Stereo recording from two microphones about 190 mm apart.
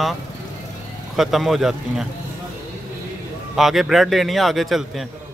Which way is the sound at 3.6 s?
Centre (ahead or behind).